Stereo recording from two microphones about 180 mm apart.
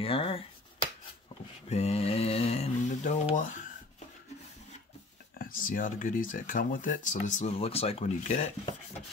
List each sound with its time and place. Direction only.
0.0 s speech: 30° left (ahead or behind)
1.7 s speech: 35° left (ahead or behind)
5.4 s speech: 50° left (ahead or behind)